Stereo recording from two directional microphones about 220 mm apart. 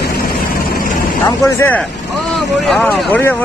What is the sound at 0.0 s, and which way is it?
Vehicle, 40° left (ahead or behind).